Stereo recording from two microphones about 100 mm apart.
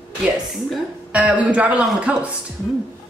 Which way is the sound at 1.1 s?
15° right (ahead or behind).